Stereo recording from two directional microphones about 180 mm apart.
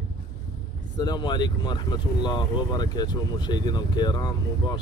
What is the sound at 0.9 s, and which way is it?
Speech, 25° left (ahead or behind).